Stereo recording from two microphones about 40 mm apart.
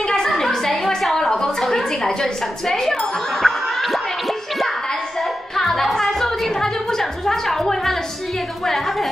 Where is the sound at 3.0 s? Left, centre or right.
Centre.